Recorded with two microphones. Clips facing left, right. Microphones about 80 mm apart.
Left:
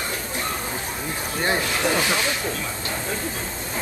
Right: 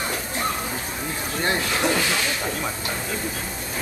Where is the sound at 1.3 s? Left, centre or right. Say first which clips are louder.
Left 1 dB; left.